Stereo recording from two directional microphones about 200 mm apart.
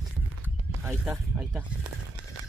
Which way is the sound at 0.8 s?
5° right (ahead or behind).